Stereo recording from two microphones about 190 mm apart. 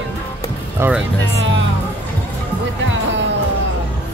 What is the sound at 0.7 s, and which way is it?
Speech, 10° right (ahead or behind).